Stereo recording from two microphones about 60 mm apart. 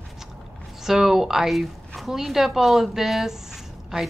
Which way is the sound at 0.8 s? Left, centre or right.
Centre.